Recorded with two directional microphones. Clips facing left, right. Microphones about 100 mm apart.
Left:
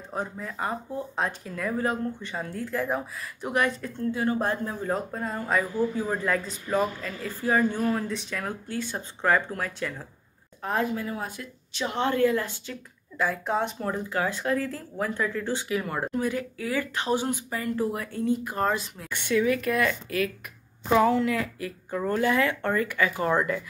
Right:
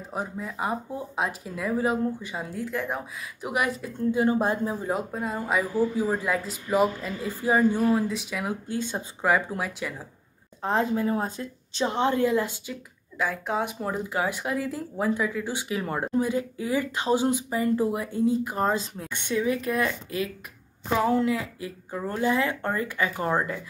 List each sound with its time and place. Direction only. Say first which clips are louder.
0.1 s speech: even; 10° right (ahead or behind)
7.8 s speech: right 4 dB; 5° right (ahead or behind)
8.6 s speech: right 2 dB; 20° right (ahead or behind)
10.6 s speech: right 3 dB; 25° right (ahead or behind)
13.2 s speech: left 1 dB; centre (ahead or behind)
15.7 s speech: right 4 dB; 25° right (ahead or behind)
21.5 s speech: left 2 dB; 20° right (ahead or behind)